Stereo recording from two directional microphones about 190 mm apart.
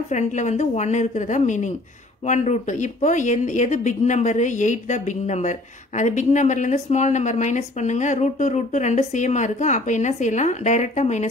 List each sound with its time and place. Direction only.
0.1 s speech: 40° left (ahead or behind)